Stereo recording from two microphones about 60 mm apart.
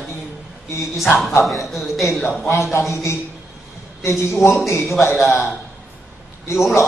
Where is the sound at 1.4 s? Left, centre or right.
Centre.